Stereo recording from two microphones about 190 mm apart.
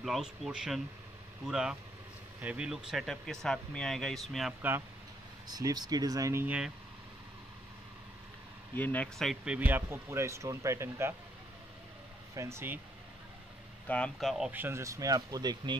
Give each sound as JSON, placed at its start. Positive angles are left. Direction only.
{"t": 0.0, "sound": "speech", "side_deg": 0}
{"t": 8.7, "sound": "speech", "side_deg": 10}
{"t": 12.4, "sound": "speech", "side_deg": -15}
{"t": 13.8, "sound": "speech", "side_deg": 5}